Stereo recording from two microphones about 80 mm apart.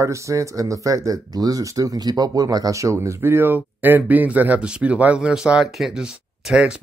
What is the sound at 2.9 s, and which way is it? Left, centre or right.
Speech, right.